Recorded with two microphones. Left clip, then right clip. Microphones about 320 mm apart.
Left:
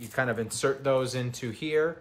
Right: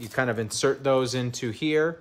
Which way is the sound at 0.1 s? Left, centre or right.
Right.